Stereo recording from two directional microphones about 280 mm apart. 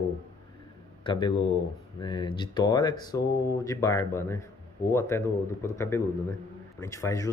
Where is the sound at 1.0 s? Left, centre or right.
Centre.